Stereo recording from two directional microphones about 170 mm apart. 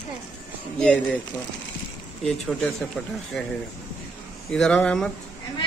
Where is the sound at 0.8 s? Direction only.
5° left (ahead or behind).